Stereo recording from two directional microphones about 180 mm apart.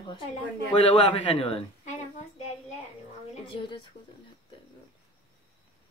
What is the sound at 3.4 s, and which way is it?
Speech, 25° left (ahead or behind).